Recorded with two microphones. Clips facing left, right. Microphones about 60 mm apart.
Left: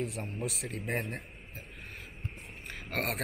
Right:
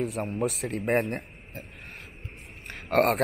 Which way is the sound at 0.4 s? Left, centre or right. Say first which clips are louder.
Right 8 dB; right.